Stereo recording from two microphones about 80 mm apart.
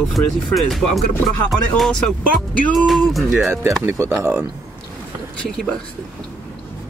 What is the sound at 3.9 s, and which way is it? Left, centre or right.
Speech, right.